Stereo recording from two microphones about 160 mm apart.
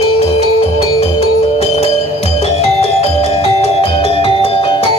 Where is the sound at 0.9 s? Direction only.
40° left (ahead or behind).